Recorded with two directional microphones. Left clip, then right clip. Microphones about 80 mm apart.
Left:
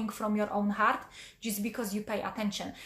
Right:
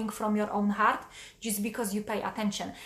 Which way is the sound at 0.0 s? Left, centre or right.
Right.